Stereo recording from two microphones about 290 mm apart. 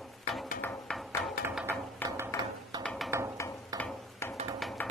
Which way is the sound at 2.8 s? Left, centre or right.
Centre.